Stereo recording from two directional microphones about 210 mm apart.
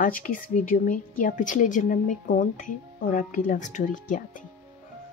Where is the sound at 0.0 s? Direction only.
40° left (ahead or behind).